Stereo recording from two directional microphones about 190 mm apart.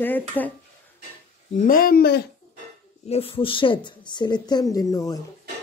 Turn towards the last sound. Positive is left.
turn(degrees=20)  # may be behind; listen again after turning